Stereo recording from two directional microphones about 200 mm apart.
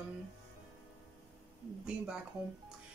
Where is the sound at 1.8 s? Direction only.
5° right (ahead or behind).